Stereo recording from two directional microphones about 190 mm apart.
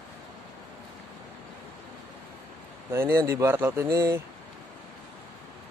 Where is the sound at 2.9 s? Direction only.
15° right (ahead or behind).